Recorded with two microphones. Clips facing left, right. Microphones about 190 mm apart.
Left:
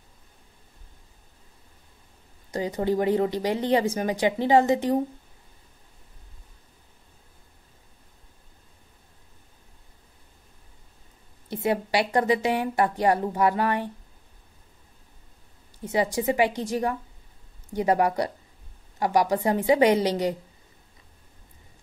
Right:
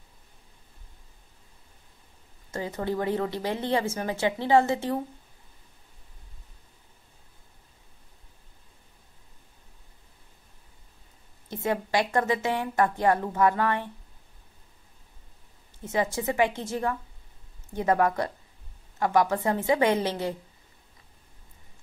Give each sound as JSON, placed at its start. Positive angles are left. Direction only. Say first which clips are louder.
{"t": 2.5, "sound": "a woman's voice", "louder": "left 5 dB", "side_deg": 15}
{"t": 11.5, "sound": "a woman's voice", "louder": "left 2 dB", "side_deg": 10}
{"t": 15.8, "sound": "a woman's voice", "louder": "left 3 dB", "side_deg": 15}